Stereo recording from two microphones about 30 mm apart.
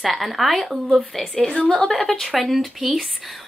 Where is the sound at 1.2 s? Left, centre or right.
Centre.